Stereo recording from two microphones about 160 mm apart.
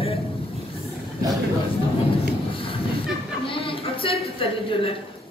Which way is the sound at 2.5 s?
35° left (ahead or behind).